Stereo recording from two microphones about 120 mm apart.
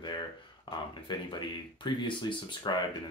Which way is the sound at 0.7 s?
40° left (ahead or behind).